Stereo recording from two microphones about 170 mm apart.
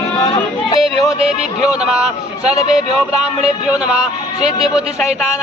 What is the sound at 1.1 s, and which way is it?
Speech, 35° right (ahead or behind).